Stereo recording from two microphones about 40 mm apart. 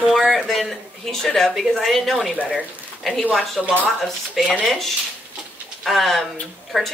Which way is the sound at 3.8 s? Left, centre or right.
Centre.